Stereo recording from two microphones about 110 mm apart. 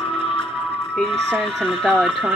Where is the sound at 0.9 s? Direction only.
5° left (ahead or behind).